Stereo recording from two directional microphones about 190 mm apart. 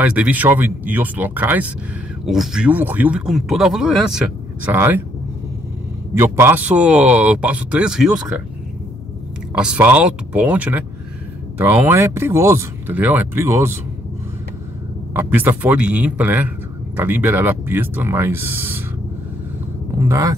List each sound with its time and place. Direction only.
0.0 s speech: 10° right (ahead or behind)
6.1 s speech: 15° right (ahead or behind)
9.5 s speech: 5° right (ahead or behind)
15.1 s speech: 10° right (ahead or behind)
20.0 s speech: 15° right (ahead or behind)